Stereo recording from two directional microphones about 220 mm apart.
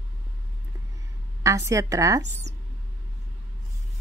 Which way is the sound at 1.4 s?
15° right (ahead or behind).